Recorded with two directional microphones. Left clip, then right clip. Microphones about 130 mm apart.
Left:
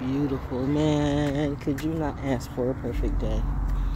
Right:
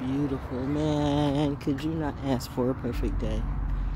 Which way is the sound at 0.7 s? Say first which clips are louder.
Left 3 dB; 5° left (ahead or behind).